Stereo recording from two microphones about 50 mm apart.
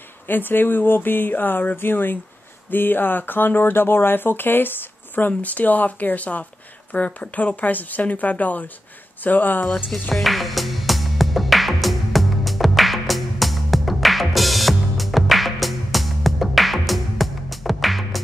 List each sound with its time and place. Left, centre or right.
0.3 s speech: left
10.1 s music: centre